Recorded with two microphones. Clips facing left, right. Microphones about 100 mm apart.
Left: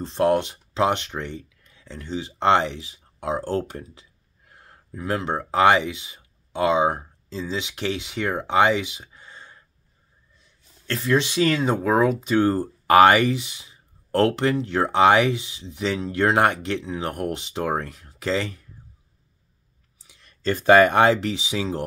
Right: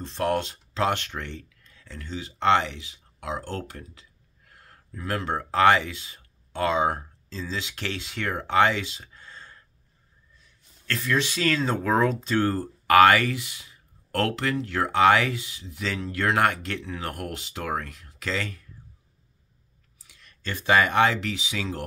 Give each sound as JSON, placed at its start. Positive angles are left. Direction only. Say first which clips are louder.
{"t": 0.0, "sound": "speech", "louder": "left 6 dB", "side_deg": 30}
{"t": 10.9, "sound": "speech", "louder": "left 4 dB", "side_deg": 30}
{"t": 12.5, "sound": "speech", "louder": "left 1 dB", "side_deg": 25}
{"t": 20.1, "sound": "a sound", "louder": "left 10 dB", "side_deg": 30}
{"t": 20.5, "sound": "speech", "louder": "left 6 dB", "side_deg": 45}